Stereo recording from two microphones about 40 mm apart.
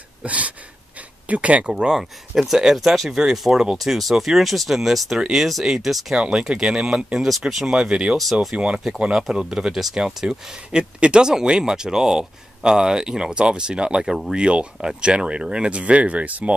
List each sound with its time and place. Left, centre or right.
0.2 s a sound: right
1.3 s speech: right
1.7 s speech: centre
2.0 s speech: centre
3.7 s speech: centre
7.2 s speech: centre
7.6 s speech: centre
9.1 s speech: centre; by 16.5 s right